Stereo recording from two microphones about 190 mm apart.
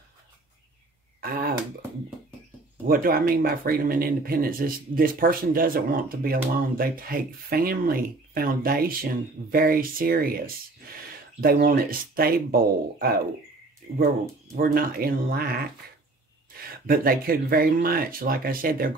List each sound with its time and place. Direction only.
1.2 s a sound: 50° right (ahead or behind)
2.9 s speech: 50° right (ahead or behind)
14.5 s speech: 50° right (ahead or behind)
16.8 s speech: 50° right (ahead or behind)